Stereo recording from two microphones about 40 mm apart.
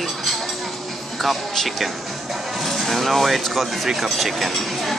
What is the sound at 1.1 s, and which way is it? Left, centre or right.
Music, centre.